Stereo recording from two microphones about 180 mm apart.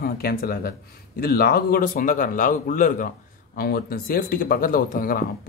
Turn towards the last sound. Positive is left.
turn(degrees=50)  # may be behind; listen again after turning